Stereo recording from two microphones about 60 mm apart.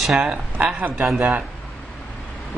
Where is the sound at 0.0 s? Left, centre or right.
Centre.